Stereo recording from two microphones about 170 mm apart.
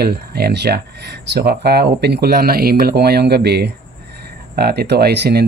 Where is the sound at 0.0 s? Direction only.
70° right (ahead or behind).